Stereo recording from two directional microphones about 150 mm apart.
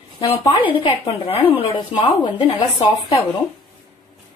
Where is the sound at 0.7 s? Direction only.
35° left (ahead or behind).